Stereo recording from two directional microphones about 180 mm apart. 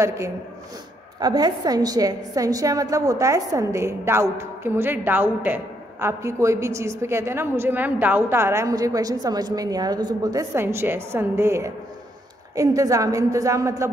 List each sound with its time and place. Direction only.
0.0 s a woman's voice: 15° right (ahead or behind)